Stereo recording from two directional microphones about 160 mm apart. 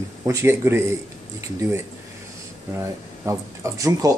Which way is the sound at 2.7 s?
15° right (ahead or behind).